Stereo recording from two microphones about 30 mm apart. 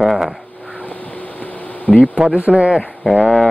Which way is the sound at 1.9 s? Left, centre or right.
Right.